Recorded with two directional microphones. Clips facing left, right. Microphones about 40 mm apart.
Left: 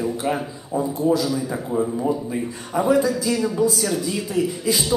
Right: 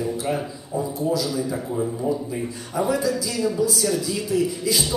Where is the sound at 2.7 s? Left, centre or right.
Left.